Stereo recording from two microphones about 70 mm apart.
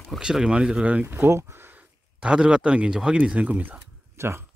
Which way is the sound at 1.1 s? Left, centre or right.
Right.